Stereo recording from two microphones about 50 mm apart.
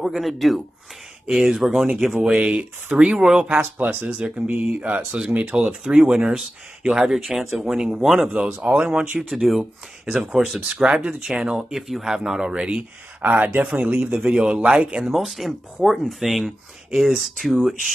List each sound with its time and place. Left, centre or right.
0.2 s speech: centre
2.3 s speech: right
3.7 s speech: right
5.6 s speech: centre
9.3 s speech: centre
9.6 s speech: centre
10.3 s speech: centre
10.6 s speech: right
11.2 s speech: centre
13.2 s speech: right
13.7 s speech: centre
15.0 s speech: centre